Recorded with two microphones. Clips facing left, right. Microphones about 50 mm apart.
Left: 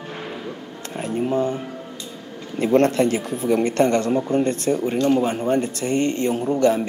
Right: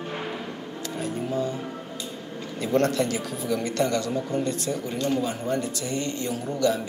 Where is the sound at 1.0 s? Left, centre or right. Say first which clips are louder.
Left 7 dB; left.